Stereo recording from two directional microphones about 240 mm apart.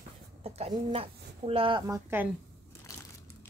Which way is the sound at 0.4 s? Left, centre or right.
Right.